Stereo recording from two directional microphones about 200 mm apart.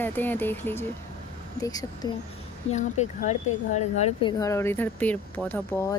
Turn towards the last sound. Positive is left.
turn(degrees=10)  # may be behind; listen again after turning